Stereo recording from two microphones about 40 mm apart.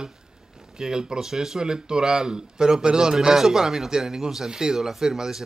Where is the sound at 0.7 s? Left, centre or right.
Centre.